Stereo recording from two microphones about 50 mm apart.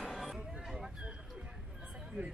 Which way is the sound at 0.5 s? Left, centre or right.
Centre.